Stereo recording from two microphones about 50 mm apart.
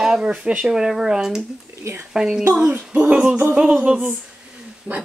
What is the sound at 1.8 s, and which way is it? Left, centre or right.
Speech, right.